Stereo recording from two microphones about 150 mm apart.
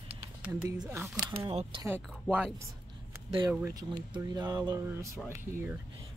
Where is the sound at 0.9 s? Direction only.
10° right (ahead or behind).